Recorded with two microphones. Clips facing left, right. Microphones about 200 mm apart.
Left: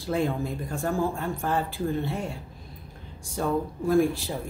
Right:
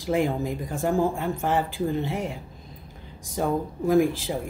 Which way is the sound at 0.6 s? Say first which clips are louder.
Right 5 dB; 15° right (ahead or behind).